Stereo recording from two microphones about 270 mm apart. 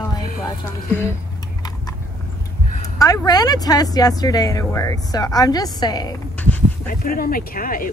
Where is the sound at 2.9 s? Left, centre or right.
Centre.